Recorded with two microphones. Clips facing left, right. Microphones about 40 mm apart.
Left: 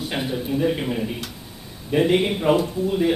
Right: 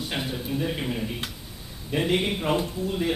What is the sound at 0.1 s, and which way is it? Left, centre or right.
A man's voice, centre.